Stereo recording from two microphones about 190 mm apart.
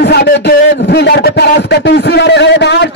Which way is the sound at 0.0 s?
60° left (ahead or behind).